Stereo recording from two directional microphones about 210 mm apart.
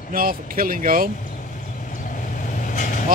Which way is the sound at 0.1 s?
45° right (ahead or behind).